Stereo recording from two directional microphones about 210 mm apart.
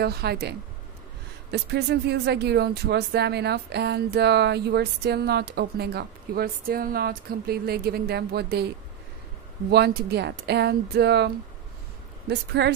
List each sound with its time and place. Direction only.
0.0 s speech: 50° right (ahead or behind)
9.7 s speech: 50° right (ahead or behind)